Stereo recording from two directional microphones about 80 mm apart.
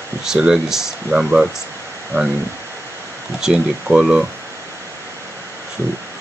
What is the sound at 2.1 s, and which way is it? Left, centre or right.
Speech, right.